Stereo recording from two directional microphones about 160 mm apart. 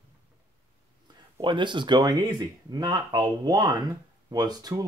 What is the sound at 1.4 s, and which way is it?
Speech, 30° right (ahead or behind).